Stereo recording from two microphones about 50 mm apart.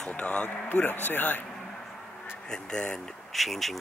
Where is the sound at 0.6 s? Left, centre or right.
Left.